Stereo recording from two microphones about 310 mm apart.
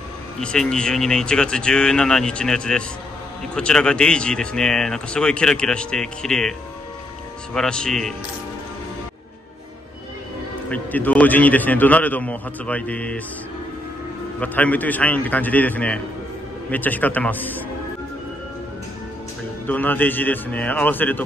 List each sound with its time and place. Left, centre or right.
0.4 s a man's voice: centre
7.5 s a man's voice: centre
10.7 s a man's voice: centre
14.4 s a man's voice: centre
19.6 s a man's voice: centre